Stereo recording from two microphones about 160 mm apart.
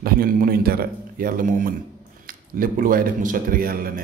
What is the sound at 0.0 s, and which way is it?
A man's voice, 70° right (ahead or behind).